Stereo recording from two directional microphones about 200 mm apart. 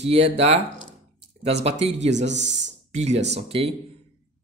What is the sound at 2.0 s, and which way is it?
Speech, 60° right (ahead or behind).